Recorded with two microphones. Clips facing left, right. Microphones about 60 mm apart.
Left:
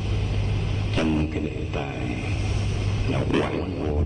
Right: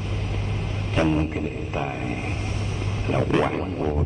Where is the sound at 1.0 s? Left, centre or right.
Right.